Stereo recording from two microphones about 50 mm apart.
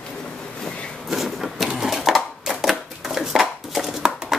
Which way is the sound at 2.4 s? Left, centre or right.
Centre.